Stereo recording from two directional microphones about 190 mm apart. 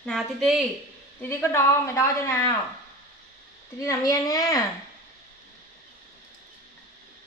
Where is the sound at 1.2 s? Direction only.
15° left (ahead or behind).